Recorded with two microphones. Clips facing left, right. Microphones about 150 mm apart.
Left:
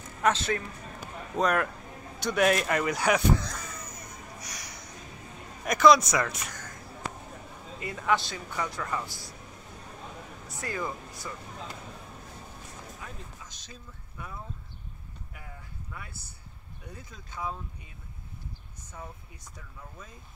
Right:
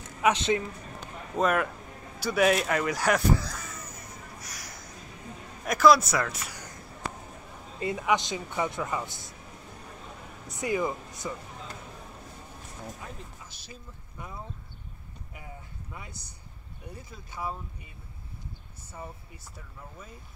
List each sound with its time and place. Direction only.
0.2 s speech: 20° right (ahead or behind)
1.3 s speech: centre (ahead or behind)
2.1 s a sound: 5° right (ahead or behind)
5.6 s a man's voice: 5° right (ahead or behind)
8.0 s speech: 15° right (ahead or behind)
10.6 s speech: 20° right (ahead or behind)
13.6 s speech: 15° right (ahead or behind)
15.9 s speech: 20° right (ahead or behind)